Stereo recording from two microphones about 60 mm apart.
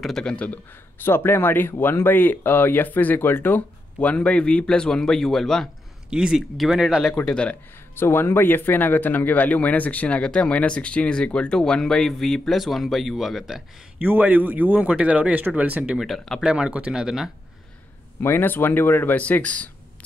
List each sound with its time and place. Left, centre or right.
0.0 s speech: centre
0.9 s speech: left; by 5.7 s centre
6.0 s speech: centre
6.3 s speech: centre
7.2 s speech: centre
7.9 s speech: left; by 13.6 s centre
13.9 s a man's voice: right
16.0 s speech: centre
16.4 s speech: centre
18.2 s speech: left